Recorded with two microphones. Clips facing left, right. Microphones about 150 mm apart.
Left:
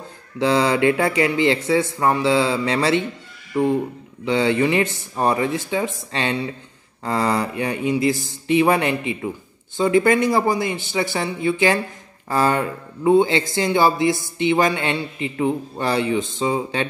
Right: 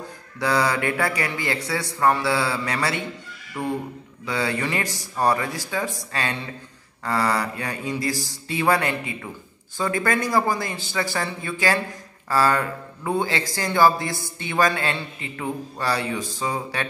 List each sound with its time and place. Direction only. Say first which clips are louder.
0.4 s a man's voice: left 5 dB; 25° left (ahead or behind)